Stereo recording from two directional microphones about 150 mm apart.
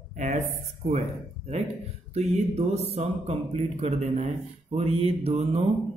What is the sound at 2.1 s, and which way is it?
Speech, 45° right (ahead or behind).